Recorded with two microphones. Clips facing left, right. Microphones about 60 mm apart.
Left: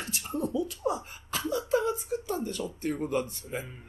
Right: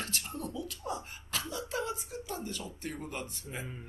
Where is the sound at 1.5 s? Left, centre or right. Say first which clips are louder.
Left 10 dB; centre.